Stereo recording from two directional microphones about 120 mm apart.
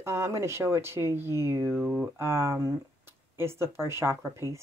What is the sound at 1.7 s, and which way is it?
Speech, 5° right (ahead or behind).